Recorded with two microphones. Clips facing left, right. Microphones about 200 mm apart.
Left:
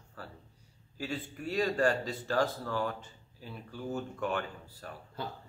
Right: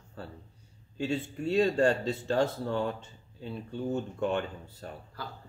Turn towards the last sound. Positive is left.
turn(degrees=20)  # may be behind; listen again after turning